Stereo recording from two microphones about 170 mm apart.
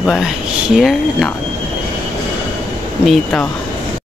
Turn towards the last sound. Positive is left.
turn(degrees=5)  # may be behind; listen again after turning